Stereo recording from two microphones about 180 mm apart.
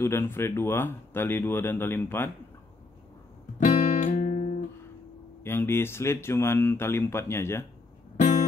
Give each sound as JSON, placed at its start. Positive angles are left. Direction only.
{"t": 0.0, "sound": "speech", "side_deg": 15}
{"t": 3.5, "sound": "guitar", "side_deg": 45}
{"t": 5.4, "sound": "speech", "side_deg": 15}
{"t": 8.2, "sound": "music", "side_deg": 45}